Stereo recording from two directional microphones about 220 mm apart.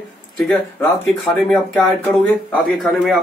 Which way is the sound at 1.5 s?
5° left (ahead or behind).